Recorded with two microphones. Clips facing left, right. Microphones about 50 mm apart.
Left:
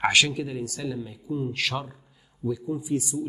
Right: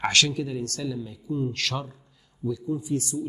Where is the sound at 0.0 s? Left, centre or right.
Centre.